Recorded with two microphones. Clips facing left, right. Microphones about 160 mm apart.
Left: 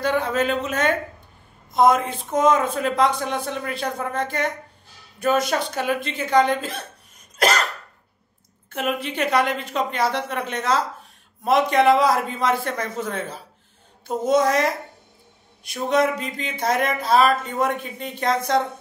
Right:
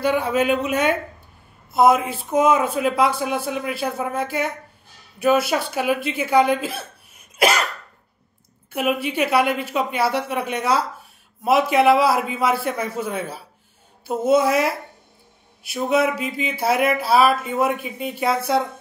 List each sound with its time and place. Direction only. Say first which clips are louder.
0.0 s speech: right 2 dB; 10° right (ahead or behind)
8.6 s speech: right 3 dB; 10° right (ahead or behind)